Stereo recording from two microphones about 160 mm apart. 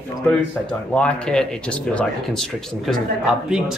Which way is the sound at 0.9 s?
5° left (ahead or behind).